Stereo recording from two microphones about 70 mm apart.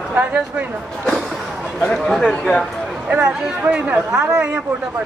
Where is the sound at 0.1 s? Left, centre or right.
Right.